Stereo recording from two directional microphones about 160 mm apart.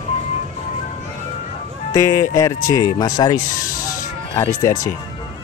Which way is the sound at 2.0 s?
20° left (ahead or behind).